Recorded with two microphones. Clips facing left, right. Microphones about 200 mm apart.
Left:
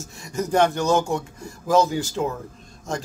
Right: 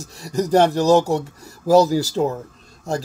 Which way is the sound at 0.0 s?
35° right (ahead or behind).